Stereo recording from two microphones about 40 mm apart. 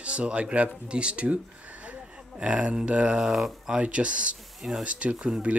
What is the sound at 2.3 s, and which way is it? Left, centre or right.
Speech, right.